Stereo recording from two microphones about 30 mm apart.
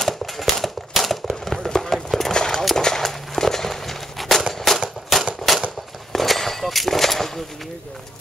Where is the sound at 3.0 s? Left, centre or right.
Centre.